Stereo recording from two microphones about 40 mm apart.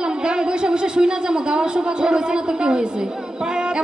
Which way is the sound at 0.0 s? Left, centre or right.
Right.